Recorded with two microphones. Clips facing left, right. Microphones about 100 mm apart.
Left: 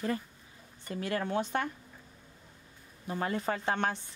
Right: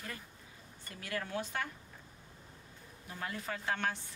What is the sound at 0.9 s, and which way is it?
Speech, 35° left (ahead or behind).